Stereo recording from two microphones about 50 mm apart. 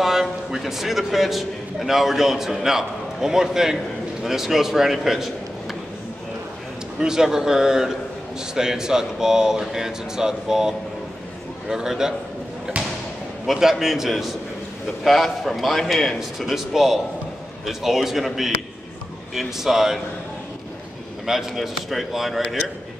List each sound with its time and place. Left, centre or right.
0.0 s a man's voice: centre
7.0 s speech: centre
12.7 s a sound: right
13.5 s a man's voice: centre
21.3 s a man's voice: centre